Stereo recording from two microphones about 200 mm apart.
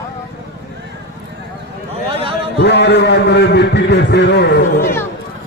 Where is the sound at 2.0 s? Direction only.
30° right (ahead or behind).